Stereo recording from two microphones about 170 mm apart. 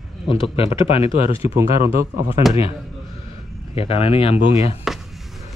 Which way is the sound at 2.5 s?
35° left (ahead or behind).